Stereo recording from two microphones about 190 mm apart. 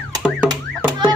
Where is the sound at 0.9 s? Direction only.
20° right (ahead or behind).